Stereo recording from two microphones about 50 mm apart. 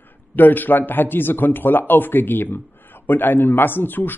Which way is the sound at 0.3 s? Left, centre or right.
Left.